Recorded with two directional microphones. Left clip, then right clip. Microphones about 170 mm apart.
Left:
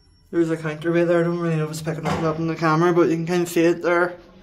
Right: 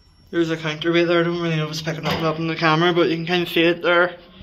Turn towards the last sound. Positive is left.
turn(degrees=15)  # may be behind; listen again after turning